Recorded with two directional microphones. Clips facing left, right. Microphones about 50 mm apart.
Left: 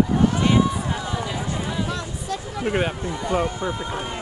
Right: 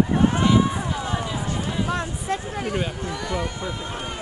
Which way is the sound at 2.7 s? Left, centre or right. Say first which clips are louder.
Left 5 dB; left.